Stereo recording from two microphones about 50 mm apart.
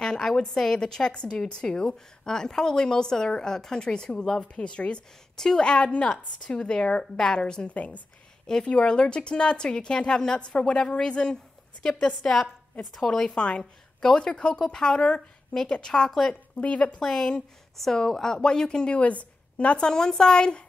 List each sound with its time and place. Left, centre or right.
0.0 s a woman's voice: centre
5.3 s a woman's voice: centre
7.7 s speech: left
8.5 s a woman's voice: centre
16.5 s speech: left
17.0 s a woman's voice: centre
18.9 s a woman's voice: left
19.8 s a woman's voice: centre